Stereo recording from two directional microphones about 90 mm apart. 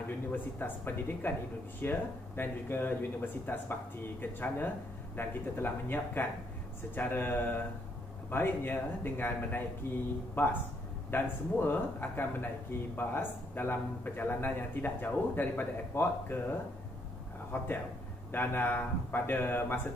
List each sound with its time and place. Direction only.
0.3 s a man's voice: 25° left (ahead or behind)